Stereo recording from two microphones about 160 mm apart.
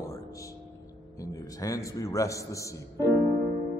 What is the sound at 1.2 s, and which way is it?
A man's voice, 20° left (ahead or behind).